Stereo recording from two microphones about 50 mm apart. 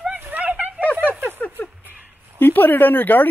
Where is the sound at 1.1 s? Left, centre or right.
Right.